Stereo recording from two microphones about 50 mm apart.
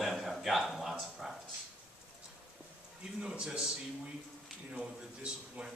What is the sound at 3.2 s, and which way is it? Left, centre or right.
Speech, centre.